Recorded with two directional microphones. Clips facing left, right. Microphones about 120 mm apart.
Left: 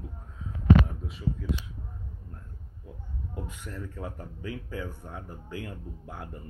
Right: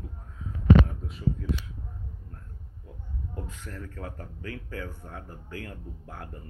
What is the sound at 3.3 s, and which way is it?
Speech, 15° left (ahead or behind).